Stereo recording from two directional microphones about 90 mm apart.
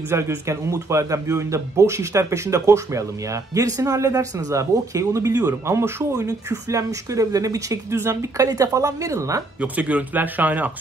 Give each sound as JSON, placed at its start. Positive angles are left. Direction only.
{"t": 0.1, "sound": "speech", "side_deg": -30}
{"t": 9.6, "sound": "speech", "side_deg": -15}